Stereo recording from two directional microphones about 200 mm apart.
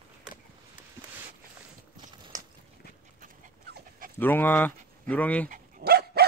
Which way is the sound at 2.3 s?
40° right (ahead or behind).